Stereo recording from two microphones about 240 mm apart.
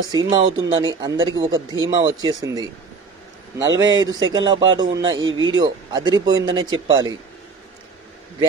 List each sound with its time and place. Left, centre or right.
0.0 s speech: centre
5.2 s speech: right
5.6 s speech: centre